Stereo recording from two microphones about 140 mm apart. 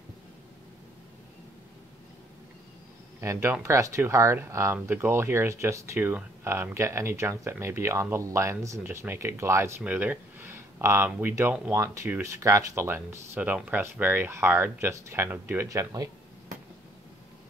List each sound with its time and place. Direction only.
3.2 s speech: 20° right (ahead or behind)